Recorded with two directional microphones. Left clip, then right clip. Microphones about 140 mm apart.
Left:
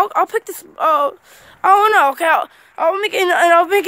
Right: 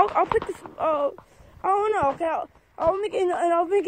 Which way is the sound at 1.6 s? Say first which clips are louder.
Left 11 dB; 40° left (ahead or behind).